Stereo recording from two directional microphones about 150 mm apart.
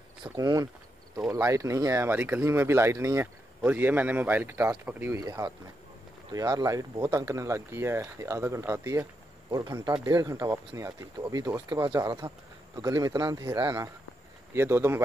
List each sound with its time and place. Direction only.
0.2 s speech: 25° right (ahead or behind)